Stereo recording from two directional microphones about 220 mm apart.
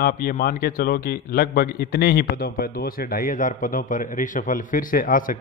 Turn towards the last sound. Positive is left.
turn(degrees=40)  # may be behind; listen again after turning